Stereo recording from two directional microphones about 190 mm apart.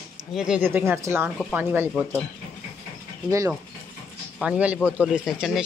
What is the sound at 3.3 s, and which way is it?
Speech, 15° right (ahead or behind).